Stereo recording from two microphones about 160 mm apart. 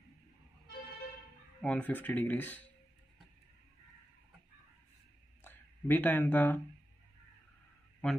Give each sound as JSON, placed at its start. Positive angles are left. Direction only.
{"t": 1.6, "sound": "speech", "side_deg": 10}
{"t": 5.4, "sound": "speech", "side_deg": 10}
{"t": 8.0, "sound": "speech", "side_deg": 10}